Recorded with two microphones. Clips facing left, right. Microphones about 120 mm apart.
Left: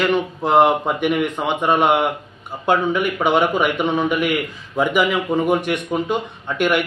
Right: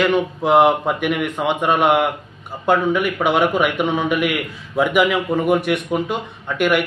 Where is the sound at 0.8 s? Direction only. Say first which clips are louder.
Left 1 dB; centre (ahead or behind).